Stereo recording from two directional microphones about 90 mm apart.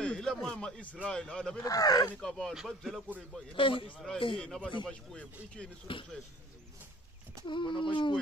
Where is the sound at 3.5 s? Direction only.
70° left (ahead or behind).